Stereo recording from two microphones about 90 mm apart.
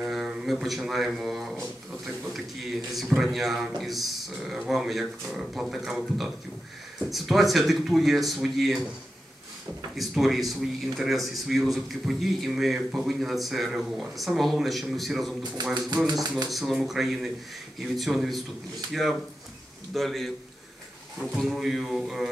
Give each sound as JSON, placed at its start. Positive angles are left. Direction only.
{"t": 0.0, "sound": "a man's voice", "side_deg": 0}
{"t": 9.9, "sound": "a man's voice", "side_deg": 0}
{"t": 15.6, "sound": "speech", "side_deg": -50}
{"t": 16.4, "sound": "a man's voice", "side_deg": 0}
{"t": 21.4, "sound": "a man's voice", "side_deg": 0}